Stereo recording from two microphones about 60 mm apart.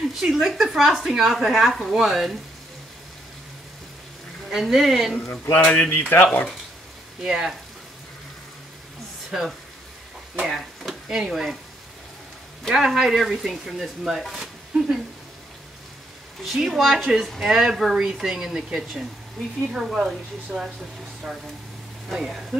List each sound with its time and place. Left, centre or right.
0.1 s speech: centre
4.5 s speech: centre
5.4 s speech: left
7.2 s speech: centre
9.3 s speech: centre
10.4 s a sound: centre
11.1 s speech: centre
12.6 s speech: centre
16.5 s speech: centre
16.9 s speech: centre